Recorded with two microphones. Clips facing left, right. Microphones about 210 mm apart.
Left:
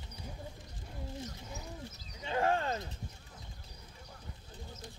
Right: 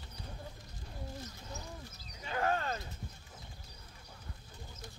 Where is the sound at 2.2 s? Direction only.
25° left (ahead or behind).